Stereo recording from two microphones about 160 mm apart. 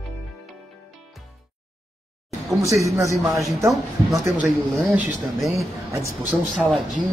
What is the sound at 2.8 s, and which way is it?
Speech, 20° right (ahead or behind).